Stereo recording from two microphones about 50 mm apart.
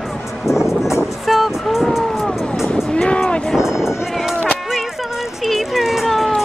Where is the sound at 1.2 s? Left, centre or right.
Centre.